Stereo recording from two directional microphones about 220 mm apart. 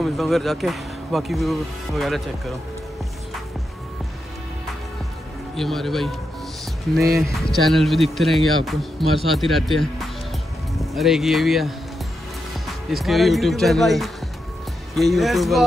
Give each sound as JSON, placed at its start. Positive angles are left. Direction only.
{"t": 0.0, "sound": "speech", "side_deg": 0}
{"t": 5.6, "sound": "speech", "side_deg": 0}